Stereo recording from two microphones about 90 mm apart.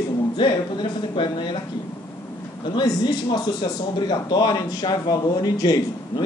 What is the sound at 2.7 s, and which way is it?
Speech, 55° left (ahead or behind).